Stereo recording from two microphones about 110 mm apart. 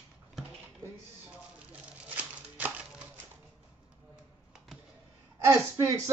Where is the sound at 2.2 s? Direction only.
15° right (ahead or behind).